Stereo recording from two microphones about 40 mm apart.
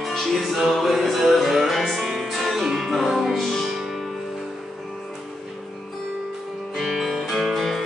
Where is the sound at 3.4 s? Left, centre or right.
Centre.